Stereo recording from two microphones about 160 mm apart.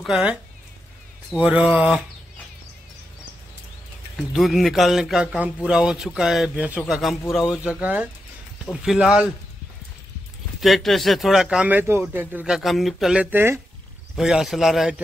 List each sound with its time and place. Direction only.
0.0 s a man's voice: 5° right (ahead or behind)
1.4 s speech: 10° right (ahead or behind)
4.3 s a man's voice: centre (ahead or behind)
10.6 s a man's voice: centre (ahead or behind)
14.1 s a man's voice: centre (ahead or behind)